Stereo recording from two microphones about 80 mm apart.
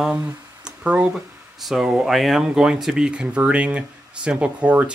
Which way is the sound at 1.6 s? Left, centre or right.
Centre.